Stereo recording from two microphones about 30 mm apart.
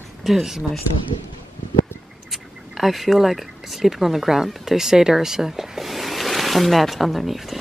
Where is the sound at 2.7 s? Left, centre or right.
Centre.